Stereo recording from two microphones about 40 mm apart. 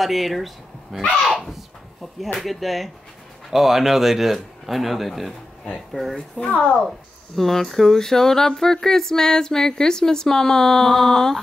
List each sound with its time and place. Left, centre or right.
0.0 s speech: centre
7.3 s speech: centre